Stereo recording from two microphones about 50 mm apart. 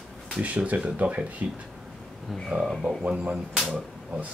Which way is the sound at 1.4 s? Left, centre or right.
Right.